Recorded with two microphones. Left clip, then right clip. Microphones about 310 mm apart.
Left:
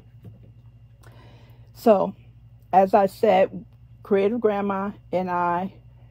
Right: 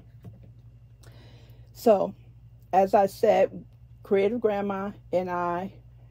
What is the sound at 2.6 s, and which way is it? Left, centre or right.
Speech, left.